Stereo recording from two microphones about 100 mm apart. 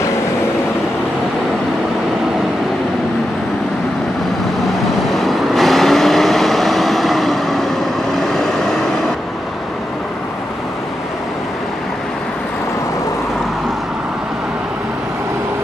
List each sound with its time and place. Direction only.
5.1 s vehicle: centre (ahead or behind)